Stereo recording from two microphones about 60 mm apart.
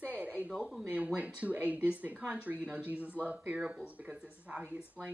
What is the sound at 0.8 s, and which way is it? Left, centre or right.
Speech, right.